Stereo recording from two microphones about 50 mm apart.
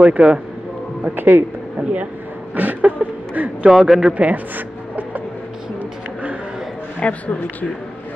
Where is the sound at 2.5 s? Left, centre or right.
Right.